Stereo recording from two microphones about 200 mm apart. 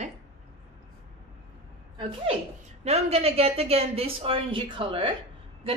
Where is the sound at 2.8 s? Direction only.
30° right (ahead or behind).